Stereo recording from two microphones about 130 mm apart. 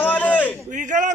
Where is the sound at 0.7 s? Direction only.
70° right (ahead or behind).